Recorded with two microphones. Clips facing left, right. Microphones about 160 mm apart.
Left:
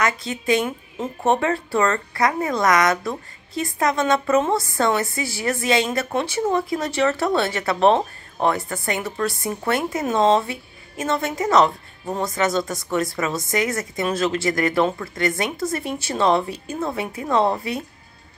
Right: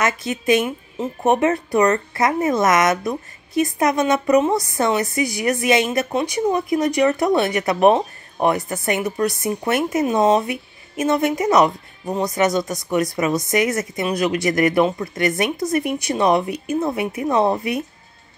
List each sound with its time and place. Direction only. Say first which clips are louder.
0.0 s a woman's voice: right 2 dB; 20° right (ahead or behind)